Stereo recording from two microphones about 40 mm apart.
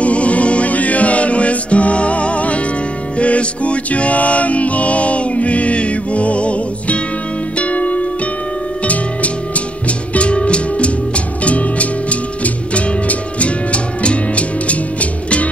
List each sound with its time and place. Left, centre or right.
0.0 s music: left
9.8 s music: left